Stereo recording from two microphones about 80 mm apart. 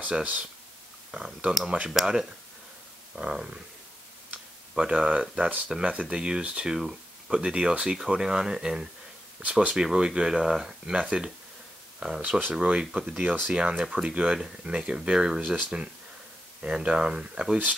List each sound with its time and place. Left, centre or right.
0.0 s speech: centre
4.7 s speech: centre
12.2 s speech: right